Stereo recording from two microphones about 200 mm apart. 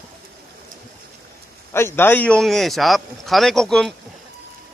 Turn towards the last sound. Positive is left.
turn(degrees=0)  # may be behind; listen again after turning